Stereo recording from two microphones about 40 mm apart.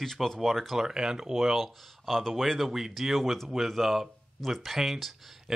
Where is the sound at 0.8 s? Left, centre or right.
Centre.